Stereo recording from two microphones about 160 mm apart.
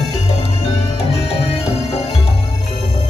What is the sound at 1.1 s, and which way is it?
Music, 35° left (ahead or behind).